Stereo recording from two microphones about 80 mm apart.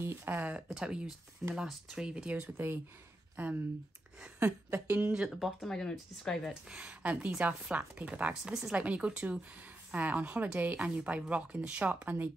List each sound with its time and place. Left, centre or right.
0.0 s speech: right
0.7 s a woman's voice: centre; by 5.1 s right
5.4 s speech: centre
6.7 s a woman's voice: centre